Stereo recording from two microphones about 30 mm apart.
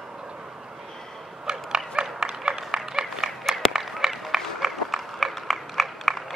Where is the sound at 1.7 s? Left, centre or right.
Right.